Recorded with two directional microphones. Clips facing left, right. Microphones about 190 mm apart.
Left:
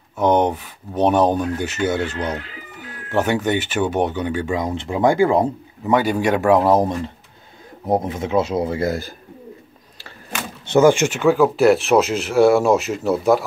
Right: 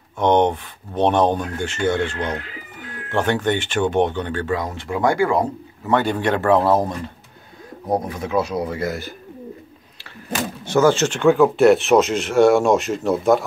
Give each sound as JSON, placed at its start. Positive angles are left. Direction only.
{"t": 0.2, "sound": "speech", "side_deg": 5}
{"t": 5.9, "sound": "speech", "side_deg": 10}
{"t": 10.7, "sound": "speech", "side_deg": 15}